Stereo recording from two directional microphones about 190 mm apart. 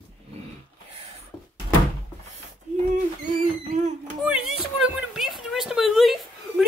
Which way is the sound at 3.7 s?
40° right (ahead or behind).